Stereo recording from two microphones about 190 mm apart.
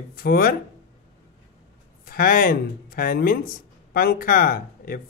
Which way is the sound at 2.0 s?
50° left (ahead or behind).